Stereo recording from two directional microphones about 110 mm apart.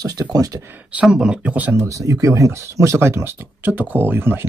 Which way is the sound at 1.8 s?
30° right (ahead or behind).